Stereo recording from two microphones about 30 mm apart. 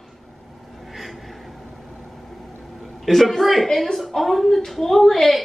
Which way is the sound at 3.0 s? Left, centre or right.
Centre.